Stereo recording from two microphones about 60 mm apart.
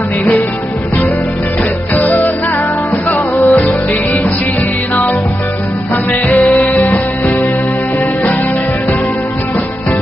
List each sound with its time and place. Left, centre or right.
2.0 s music: left
6.5 s music: left